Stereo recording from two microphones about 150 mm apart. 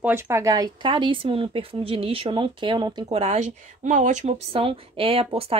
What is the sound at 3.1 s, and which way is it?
Speech, 45° right (ahead or behind).